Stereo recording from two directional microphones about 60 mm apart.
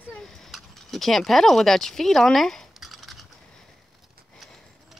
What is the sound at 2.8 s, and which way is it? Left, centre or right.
Typing, centre.